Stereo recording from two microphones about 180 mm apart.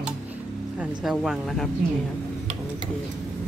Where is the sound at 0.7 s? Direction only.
Centre (ahead or behind).